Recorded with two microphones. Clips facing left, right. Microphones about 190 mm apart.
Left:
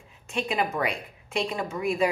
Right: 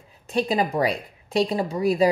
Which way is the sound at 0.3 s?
35° right (ahead or behind).